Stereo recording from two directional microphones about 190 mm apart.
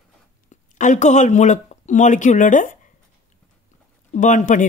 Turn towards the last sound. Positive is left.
turn(degrees=40)  # may be behind; listen again after turning